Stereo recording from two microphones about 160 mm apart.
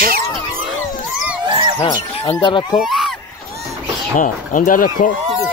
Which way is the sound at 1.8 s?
20° left (ahead or behind).